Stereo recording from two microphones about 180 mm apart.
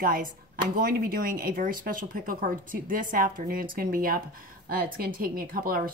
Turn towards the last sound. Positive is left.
turn(degrees=-55)  # may be behind; listen again after turning